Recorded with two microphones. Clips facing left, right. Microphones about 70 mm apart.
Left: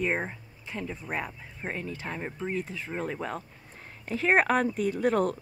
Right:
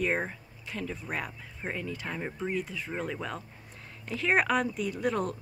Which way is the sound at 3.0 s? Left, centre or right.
Left.